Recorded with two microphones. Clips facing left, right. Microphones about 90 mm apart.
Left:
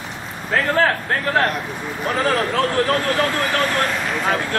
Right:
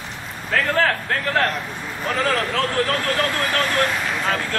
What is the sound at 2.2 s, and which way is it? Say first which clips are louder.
Speech: left 4 dB; 20° left (ahead or behind).